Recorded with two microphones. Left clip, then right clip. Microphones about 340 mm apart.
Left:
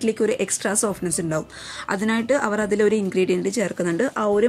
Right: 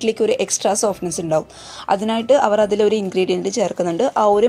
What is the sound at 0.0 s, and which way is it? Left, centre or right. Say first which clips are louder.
Speech: right 4 dB; centre.